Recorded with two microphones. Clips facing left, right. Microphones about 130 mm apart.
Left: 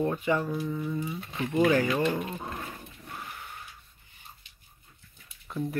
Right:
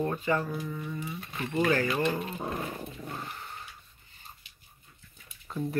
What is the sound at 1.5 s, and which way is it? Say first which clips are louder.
Speech: left 3 dB; 15° left (ahead or behind).